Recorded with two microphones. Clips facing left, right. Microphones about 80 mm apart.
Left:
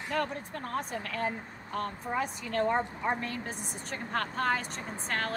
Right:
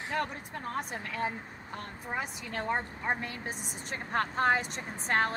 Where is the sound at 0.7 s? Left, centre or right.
Centre.